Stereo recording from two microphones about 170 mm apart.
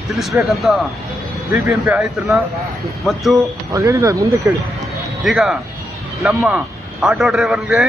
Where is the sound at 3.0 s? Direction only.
Centre (ahead or behind).